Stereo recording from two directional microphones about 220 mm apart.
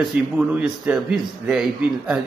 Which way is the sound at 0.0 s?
5° right (ahead or behind).